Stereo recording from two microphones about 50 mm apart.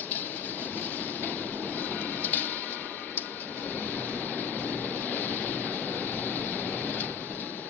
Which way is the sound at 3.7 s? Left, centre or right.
Left.